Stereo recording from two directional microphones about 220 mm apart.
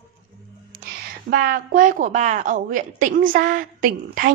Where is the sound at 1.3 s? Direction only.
40° right (ahead or behind).